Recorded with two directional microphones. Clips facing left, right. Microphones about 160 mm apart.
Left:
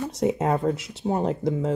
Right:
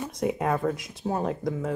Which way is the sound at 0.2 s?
25° left (ahead or behind).